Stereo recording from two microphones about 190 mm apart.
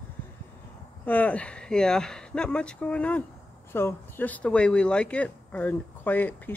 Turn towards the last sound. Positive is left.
turn(degrees=10)  # may be behind; listen again after turning